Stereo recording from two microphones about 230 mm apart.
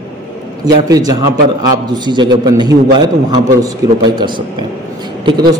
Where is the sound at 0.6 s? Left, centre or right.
Centre.